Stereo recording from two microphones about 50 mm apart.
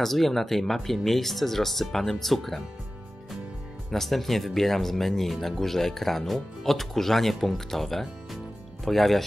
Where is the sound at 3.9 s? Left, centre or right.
Centre.